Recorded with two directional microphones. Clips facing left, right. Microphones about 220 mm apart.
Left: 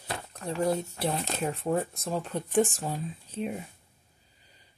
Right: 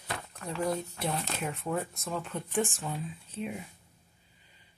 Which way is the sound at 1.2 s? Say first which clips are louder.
Left 4 dB; 35° left (ahead or behind).